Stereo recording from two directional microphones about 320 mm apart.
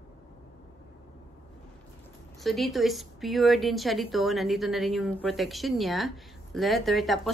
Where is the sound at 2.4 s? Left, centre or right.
Centre.